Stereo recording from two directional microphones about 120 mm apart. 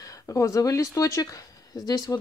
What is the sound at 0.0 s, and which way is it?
Speech, 25° left (ahead or behind).